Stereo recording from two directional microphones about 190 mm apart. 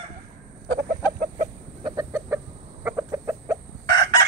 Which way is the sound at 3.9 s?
65° right (ahead or behind).